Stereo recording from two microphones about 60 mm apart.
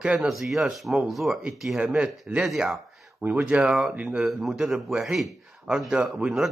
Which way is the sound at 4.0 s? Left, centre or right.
Right.